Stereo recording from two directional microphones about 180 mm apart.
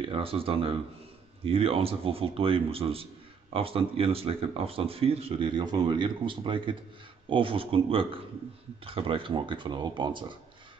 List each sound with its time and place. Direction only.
0.1 s speech: 30° right (ahead or behind)